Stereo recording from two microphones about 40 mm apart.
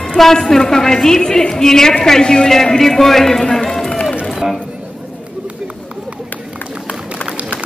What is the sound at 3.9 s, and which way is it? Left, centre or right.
Run, left.